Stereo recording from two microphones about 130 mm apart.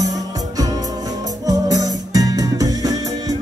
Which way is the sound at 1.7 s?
25° right (ahead or behind).